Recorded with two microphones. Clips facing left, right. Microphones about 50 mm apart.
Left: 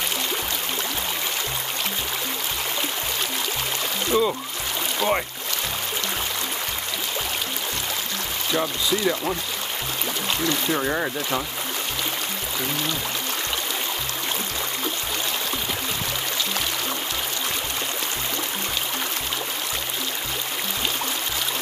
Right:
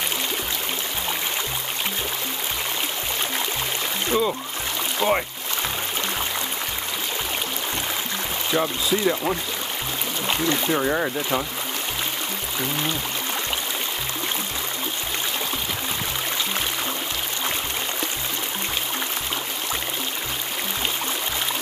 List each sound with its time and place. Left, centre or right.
4.1 s speech: centre
5.0 s speech: centre
8.5 s speech: centre
10.2 s a sound: centre
10.7 s speech: centre